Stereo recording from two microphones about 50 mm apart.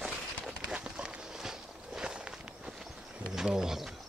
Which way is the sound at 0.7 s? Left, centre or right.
Right.